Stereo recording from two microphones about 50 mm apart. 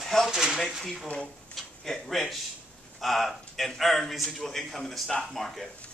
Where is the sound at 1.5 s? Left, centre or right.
Centre.